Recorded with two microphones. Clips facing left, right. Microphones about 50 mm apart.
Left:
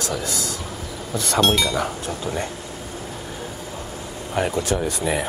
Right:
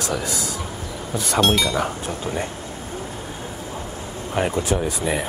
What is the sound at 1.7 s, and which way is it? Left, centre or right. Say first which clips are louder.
Speech: right 1 dB; centre.